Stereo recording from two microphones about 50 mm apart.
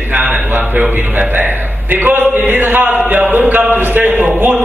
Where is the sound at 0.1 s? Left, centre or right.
Right.